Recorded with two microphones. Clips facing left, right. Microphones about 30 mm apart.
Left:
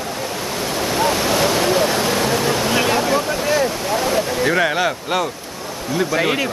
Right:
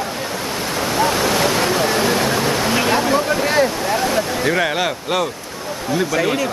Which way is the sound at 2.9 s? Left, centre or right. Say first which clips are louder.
Right 1 dB; centre.